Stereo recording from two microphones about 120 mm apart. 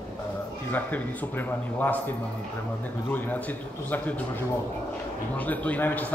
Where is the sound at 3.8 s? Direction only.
15° left (ahead or behind).